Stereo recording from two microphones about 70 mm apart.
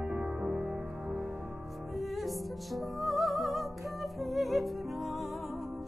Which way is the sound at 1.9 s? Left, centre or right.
Centre.